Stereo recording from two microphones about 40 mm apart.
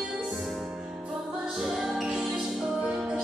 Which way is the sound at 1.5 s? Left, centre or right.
Centre.